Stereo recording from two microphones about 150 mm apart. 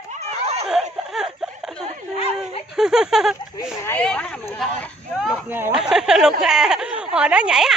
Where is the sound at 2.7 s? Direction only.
5° right (ahead or behind).